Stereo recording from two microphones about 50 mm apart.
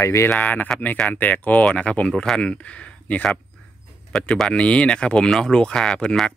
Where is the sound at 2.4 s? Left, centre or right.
Left.